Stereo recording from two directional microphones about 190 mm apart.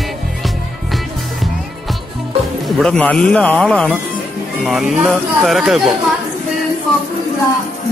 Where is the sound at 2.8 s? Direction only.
5° left (ahead or behind).